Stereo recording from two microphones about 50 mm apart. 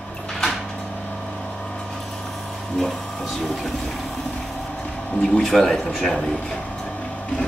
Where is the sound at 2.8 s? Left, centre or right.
Centre.